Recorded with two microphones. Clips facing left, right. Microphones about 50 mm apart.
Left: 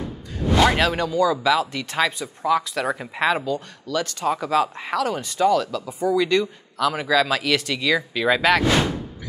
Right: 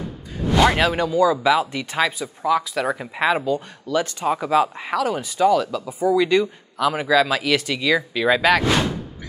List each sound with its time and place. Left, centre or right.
0.6 s speech: centre